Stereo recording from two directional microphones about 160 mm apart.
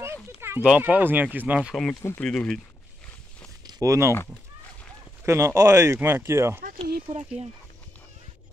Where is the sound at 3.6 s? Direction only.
20° right (ahead or behind).